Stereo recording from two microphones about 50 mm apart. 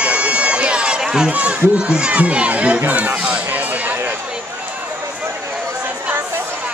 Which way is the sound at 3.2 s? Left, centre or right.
Right.